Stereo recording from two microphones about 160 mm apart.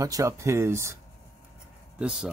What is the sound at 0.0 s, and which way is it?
Speech, 20° right (ahead or behind).